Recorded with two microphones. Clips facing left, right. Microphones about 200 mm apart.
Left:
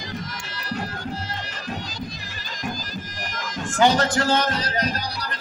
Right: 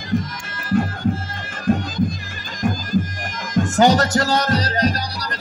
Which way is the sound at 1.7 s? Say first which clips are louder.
Right 14 dB; 50° right (ahead or behind).